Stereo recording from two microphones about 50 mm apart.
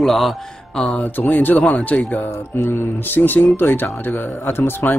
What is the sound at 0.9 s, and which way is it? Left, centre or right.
Speech, left.